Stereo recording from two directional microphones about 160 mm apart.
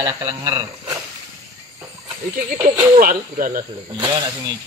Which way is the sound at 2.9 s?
60° right (ahead or behind).